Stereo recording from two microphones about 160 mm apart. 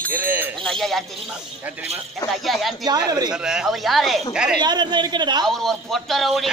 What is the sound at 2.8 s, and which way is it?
Speech, 25° right (ahead or behind).